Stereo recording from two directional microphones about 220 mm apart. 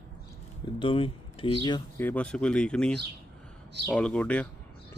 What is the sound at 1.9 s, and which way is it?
Speech, 5° left (ahead or behind).